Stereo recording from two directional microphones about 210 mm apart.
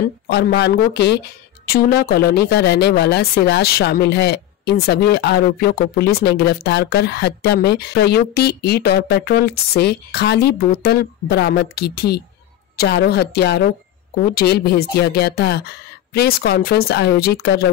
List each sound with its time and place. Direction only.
0.3 s speech: 50° left (ahead or behind)